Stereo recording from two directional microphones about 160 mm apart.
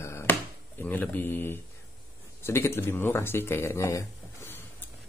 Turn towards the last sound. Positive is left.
turn(degrees=15)  # may be behind; listen again after turning